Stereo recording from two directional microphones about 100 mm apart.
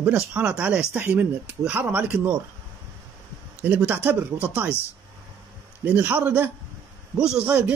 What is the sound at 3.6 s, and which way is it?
Speech, 20° right (ahead or behind).